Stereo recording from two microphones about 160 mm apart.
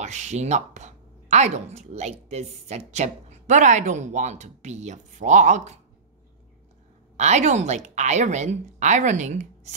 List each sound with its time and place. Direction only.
0.0 s speech: 45° right (ahead or behind)
7.2 s speech: 45° right (ahead or behind)